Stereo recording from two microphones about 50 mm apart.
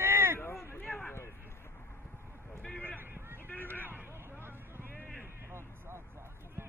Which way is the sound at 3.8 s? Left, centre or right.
Right.